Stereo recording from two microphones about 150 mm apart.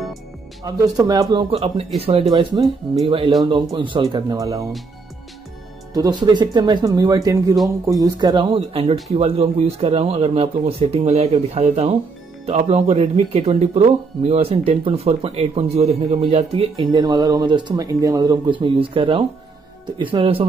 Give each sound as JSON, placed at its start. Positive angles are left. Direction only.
{"t": 0.7, "sound": "speech", "side_deg": -25}
{"t": 1.5, "sound": "speech", "side_deg": -40}
{"t": 6.2, "sound": "speech", "side_deg": -30}